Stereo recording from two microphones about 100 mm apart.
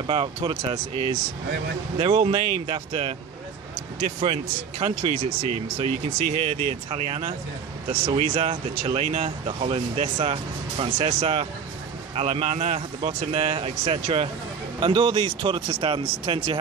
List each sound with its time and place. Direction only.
0.0 s speech: 50° right (ahead or behind)
5.8 s speech: 65° right (ahead or behind)
12.2 s a man's voice: 75° right (ahead or behind)
14.8 s speech: 50° right (ahead or behind); by 16.4 s 75° right (ahead or behind)